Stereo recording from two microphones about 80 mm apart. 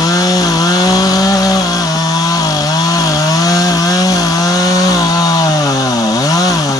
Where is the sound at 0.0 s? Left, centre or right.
Left.